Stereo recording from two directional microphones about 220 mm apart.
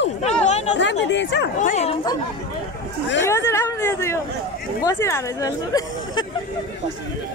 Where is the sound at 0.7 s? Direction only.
55° left (ahead or behind).